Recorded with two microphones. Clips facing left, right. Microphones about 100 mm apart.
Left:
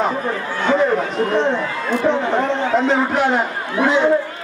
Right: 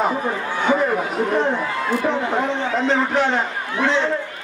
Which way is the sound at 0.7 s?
5° right (ahead or behind).